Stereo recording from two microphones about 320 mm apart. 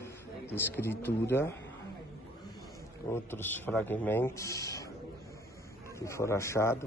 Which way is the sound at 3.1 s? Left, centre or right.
Centre.